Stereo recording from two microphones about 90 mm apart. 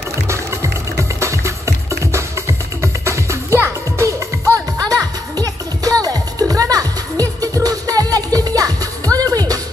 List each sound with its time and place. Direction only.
0.3 s music: 35° right (ahead or behind)
4.8 s music: 40° right (ahead or behind)